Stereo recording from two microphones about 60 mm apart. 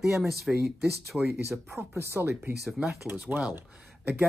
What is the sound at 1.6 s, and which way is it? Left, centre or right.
Speech, right.